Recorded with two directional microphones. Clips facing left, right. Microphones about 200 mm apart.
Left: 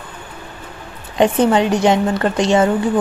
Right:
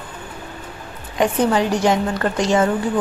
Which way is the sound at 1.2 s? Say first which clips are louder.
Left 4 dB; 25° left (ahead or behind).